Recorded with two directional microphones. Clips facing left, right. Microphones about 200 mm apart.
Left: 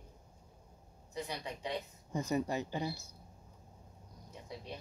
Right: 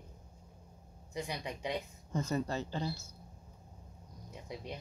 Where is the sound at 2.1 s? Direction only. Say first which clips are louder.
Left 1 dB; 15° left (ahead or behind).